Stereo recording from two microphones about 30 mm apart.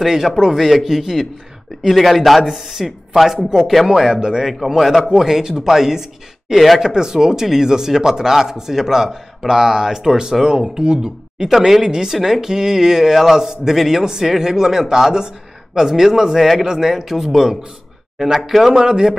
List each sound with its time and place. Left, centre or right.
0.0 s a man's voice: centre
1.8 s a man's voice: centre
2.4 s a man's voice: centre
4.1 s speech: right
4.7 s speech: centre; by 11.4 s right
11.4 s speech: centre
16.6 s speech: right
16.9 s speech: centre
18.8 s speech: right